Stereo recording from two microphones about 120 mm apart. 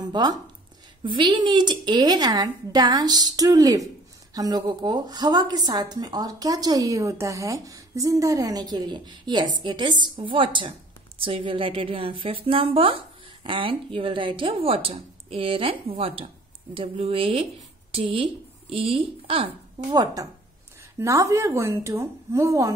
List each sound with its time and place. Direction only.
0.0 s a woman's voice: 35° right (ahead or behind)
19.9 s a woman's voice: 30° right (ahead or behind)